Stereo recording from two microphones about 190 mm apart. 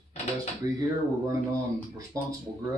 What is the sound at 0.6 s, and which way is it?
Speech, 15° right (ahead or behind).